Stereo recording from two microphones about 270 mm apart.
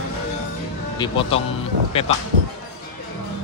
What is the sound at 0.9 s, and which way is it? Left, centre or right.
Speech, centre.